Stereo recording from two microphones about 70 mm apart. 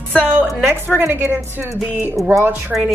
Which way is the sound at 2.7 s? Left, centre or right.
Centre.